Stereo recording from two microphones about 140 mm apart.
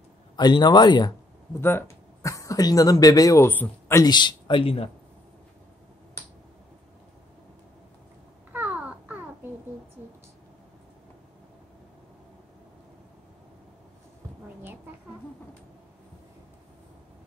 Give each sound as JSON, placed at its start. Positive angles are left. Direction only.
{"t": 0.4, "sound": "a man's voice", "side_deg": 30}
{"t": 1.6, "sound": "speech", "side_deg": 15}
{"t": 4.0, "sound": "a man's voice", "side_deg": 30}
{"t": 8.5, "sound": "babbling", "side_deg": -10}